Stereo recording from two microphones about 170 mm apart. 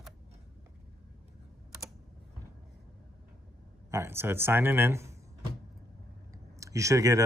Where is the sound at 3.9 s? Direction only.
15° right (ahead or behind).